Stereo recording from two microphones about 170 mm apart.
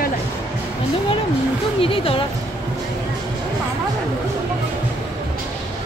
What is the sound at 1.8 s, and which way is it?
Speech, 30° left (ahead or behind).